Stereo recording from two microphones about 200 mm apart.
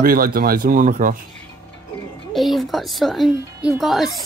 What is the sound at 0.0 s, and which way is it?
Speech, 45° right (ahead or behind).